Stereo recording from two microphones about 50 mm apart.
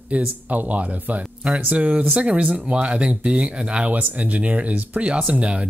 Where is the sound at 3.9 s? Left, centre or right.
Right.